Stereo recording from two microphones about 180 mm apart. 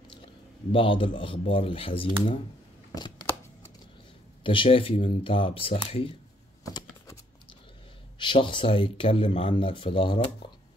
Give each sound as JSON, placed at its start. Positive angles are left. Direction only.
{"t": 0.2, "sound": "a man's voice", "side_deg": 30}
{"t": 2.9, "sound": "a sound", "side_deg": 20}
{"t": 4.4, "sound": "speech", "side_deg": 30}
{"t": 6.6, "sound": "typing", "side_deg": 20}
{"t": 8.2, "sound": "speech", "side_deg": 25}